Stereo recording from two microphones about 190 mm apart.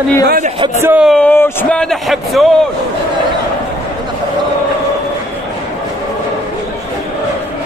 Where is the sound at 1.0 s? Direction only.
5° left (ahead or behind).